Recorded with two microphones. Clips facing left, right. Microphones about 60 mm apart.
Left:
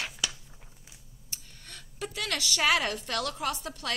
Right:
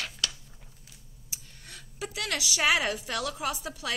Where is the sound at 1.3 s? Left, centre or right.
Centre.